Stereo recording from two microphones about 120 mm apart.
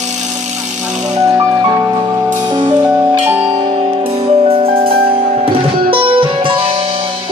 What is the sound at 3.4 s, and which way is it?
Music, 60° right (ahead or behind).